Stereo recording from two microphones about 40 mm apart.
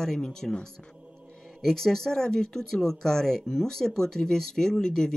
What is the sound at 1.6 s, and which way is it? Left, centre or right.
Speech, centre.